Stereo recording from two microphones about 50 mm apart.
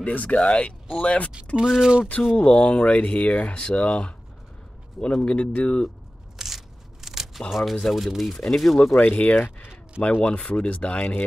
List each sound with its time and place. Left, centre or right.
0.0 s speech: left
0.4 s speech: left
1.6 s speech: centre
2.3 s speech: left
6.3 s a sound: centre
7.3 s speech: centre
9.0 s speech: left